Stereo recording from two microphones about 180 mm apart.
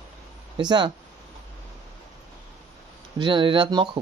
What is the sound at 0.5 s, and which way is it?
Speech, 25° right (ahead or behind).